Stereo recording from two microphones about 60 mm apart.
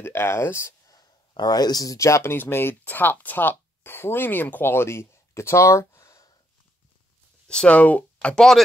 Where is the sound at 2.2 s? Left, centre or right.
Left.